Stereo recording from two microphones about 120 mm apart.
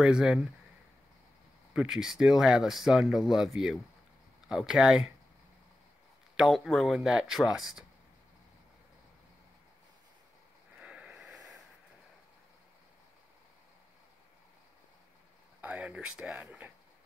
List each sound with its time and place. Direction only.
0.0 s speech: 5° right (ahead or behind)
1.7 s speech: 5° right (ahead or behind)
6.3 s speech: centre (ahead or behind)
10.8 s a sound: 10° right (ahead or behind)
15.6 s speech: 10° right (ahead or behind)